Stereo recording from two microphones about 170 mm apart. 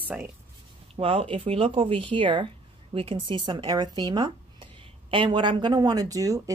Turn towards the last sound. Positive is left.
turn(degrees=-20)  # may be behind; listen again after turning